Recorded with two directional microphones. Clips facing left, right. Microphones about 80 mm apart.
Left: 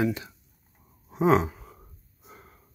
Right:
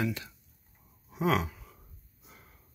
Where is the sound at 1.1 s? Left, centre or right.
Left.